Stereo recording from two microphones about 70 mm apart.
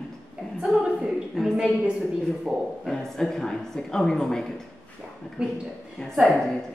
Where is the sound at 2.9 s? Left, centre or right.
Centre.